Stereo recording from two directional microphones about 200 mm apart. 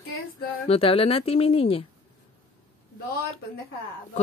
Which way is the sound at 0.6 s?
30° left (ahead or behind).